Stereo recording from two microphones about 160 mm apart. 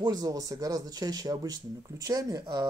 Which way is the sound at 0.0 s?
25° right (ahead or behind).